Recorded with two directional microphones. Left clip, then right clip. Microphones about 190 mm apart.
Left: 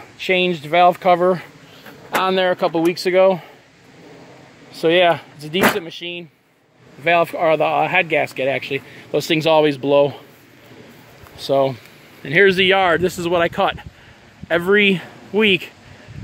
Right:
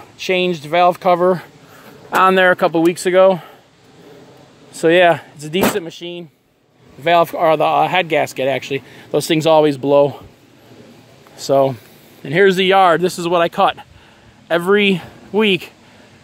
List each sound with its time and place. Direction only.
0.3 s speech: 10° right (ahead or behind)
2.0 s speech: 25° right (ahead or behind)
4.7 s speech: 20° right (ahead or behind)
11.3 s speech: 25° right (ahead or behind)